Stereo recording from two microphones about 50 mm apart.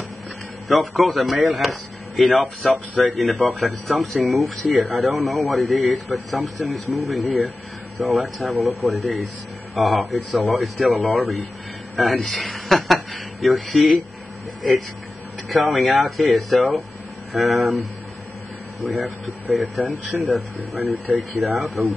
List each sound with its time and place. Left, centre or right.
0.7 s a man's voice: centre
15.5 s a man's voice: centre
18.9 s a man's voice: centre